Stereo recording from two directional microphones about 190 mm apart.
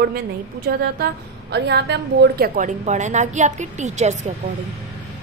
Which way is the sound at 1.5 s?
60° right (ahead or behind).